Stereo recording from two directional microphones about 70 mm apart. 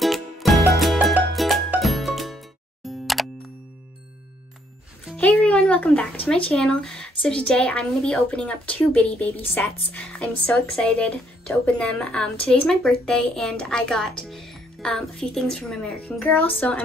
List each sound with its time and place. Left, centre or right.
0.0 s music: centre
5.1 s speech: left